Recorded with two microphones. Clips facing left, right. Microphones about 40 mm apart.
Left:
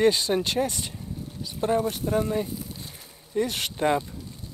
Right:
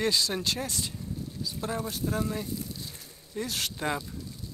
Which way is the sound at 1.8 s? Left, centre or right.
Left.